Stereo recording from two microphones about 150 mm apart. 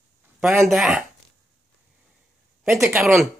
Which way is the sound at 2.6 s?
15° right (ahead or behind).